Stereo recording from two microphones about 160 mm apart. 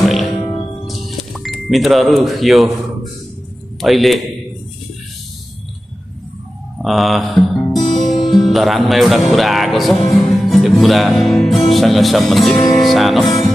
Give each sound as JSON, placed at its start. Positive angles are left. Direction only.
{"t": 0.0, "sound": "music", "side_deg": 0}
{"t": 0.4, "sound": "music", "side_deg": 20}
{"t": 0.8, "sound": "a sound", "side_deg": 0}
{"t": 3.8, "sound": "music", "side_deg": 0}
{"t": 6.8, "sound": "music", "side_deg": 0}
{"t": 7.7, "sound": "speech", "side_deg": 0}
{"t": 10.4, "sound": "music", "side_deg": 0}
{"t": 12.4, "sound": "music", "side_deg": 25}
{"t": 12.8, "sound": "music", "side_deg": 0}
{"t": 13.2, "sound": "music", "side_deg": 25}